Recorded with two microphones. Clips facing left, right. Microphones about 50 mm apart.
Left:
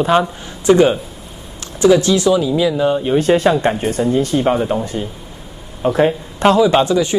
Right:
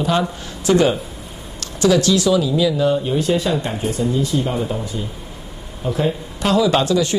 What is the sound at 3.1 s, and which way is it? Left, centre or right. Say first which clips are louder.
A man's voice: left 6 dB; left.